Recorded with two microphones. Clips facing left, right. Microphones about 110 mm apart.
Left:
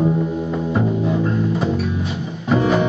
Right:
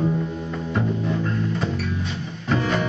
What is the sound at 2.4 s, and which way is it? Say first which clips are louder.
Music: left 6 dB; 5° left (ahead or behind).